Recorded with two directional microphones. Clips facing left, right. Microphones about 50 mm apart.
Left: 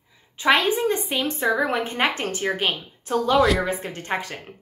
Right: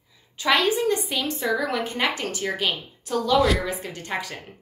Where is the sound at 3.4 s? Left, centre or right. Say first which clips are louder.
Left 3 dB; centre.